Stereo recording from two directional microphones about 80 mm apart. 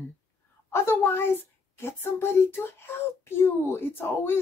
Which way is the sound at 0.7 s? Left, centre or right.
Left.